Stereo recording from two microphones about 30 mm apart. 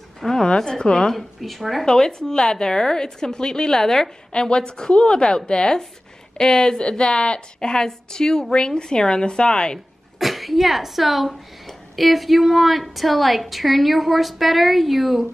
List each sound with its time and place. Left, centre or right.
0.2 s a woman's voice: centre
0.6 s a woman's voice: left
1.1 s a woman's voice: centre
1.9 s a woman's voice: centre
4.3 s a woman's voice: left
10.1 s a woman's voice: centre